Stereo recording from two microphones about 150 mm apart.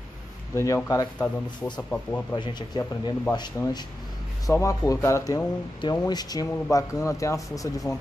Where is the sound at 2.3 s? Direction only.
30° left (ahead or behind).